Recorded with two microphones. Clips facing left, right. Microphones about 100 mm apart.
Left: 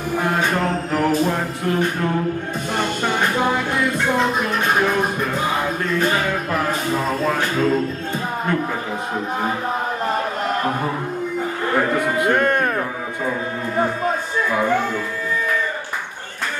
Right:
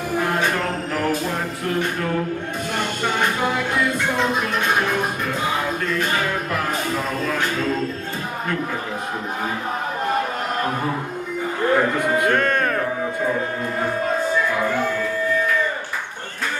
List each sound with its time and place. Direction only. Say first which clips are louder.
12.3 s speech: left 2 dB; 15° left (ahead or behind)